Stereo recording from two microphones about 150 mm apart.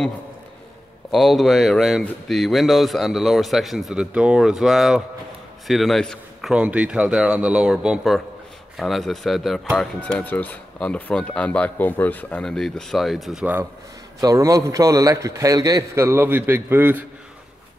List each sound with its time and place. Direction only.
1.1 s speech: centre (ahead or behind)
6.5 s speech: 10° right (ahead or behind)
14.2 s a man's voice: 20° right (ahead or behind)